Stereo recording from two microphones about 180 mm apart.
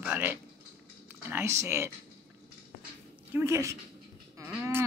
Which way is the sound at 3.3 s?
15° right (ahead or behind).